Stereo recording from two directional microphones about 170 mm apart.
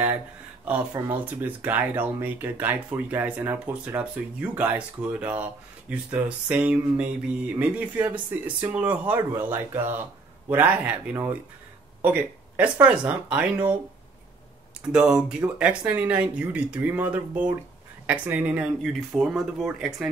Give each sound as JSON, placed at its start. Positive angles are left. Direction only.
{"t": 0.7, "sound": "speech", "side_deg": -10}
{"t": 14.9, "sound": "speech", "side_deg": -5}